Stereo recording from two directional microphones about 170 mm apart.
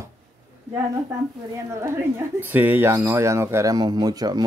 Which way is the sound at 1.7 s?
15° right (ahead or behind).